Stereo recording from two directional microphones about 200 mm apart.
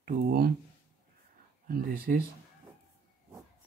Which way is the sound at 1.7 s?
45° right (ahead or behind).